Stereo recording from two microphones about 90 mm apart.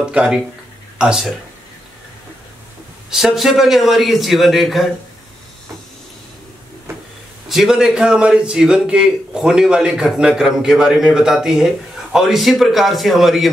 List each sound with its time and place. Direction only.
0.1 s a man's voice: 10° right (ahead or behind)
3.1 s a man's voice: 5° right (ahead or behind)
7.4 s a man's voice: 5° right (ahead or behind)